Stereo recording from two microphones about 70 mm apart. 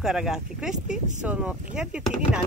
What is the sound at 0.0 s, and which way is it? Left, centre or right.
Speech, centre.